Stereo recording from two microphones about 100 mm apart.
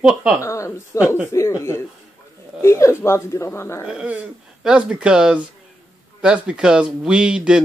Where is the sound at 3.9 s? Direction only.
10° right (ahead or behind).